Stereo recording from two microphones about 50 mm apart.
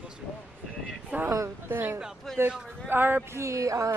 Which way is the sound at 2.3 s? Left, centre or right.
Centre.